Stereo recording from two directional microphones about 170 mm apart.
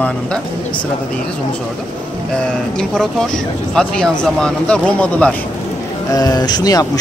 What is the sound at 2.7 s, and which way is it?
Speech, 5° left (ahead or behind).